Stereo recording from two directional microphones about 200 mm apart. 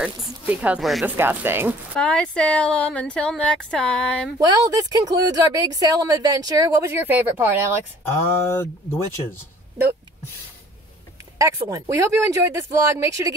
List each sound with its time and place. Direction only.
0.0 s speech: 5° right (ahead or behind)
2.0 s speech: 5° left (ahead or behind)
4.4 s speech: 20° right (ahead or behind)
8.5 s speech: 10° left (ahead or behind)
11.3 s speech: 20° right (ahead or behind)